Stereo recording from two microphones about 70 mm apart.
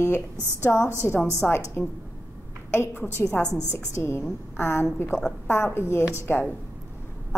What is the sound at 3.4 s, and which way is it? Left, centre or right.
Speech, right.